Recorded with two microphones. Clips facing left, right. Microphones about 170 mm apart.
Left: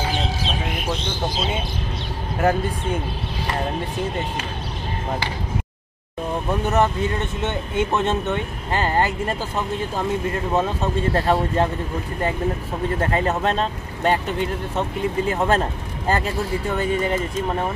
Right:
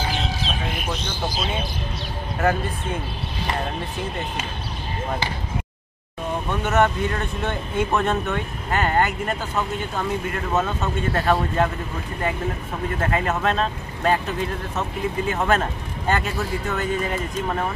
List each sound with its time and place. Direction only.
6.6 s speech: 35° left (ahead or behind)
7.4 s speech: 25° left (ahead or behind)
10.5 s speech: 35° left (ahead or behind)
13.0 s speech: 30° left (ahead or behind)